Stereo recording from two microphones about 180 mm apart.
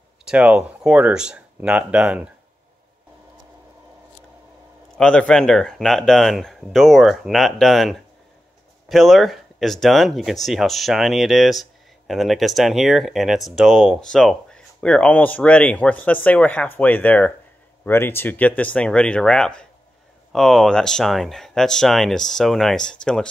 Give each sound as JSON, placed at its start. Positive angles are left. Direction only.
{"t": 0.2, "sound": "speech", "side_deg": -5}
{"t": 4.9, "sound": "speech", "side_deg": 5}